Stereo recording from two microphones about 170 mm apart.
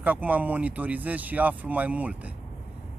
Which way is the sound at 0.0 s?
10° right (ahead or behind).